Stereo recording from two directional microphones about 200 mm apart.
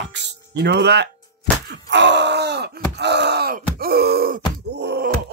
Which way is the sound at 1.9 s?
60° right (ahead or behind).